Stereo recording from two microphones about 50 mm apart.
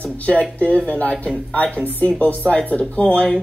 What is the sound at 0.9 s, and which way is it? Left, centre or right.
Speech, left.